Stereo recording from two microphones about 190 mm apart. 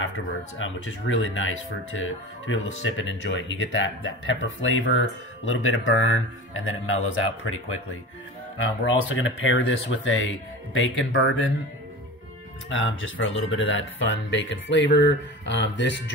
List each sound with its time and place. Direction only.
0.6 s speech: 90° left
2.8 s speech: 80° left
12.6 s speech: 90° left; by 16.0 s 70° left (ahead or behind)